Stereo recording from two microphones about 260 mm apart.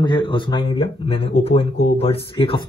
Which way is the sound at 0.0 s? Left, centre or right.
Centre.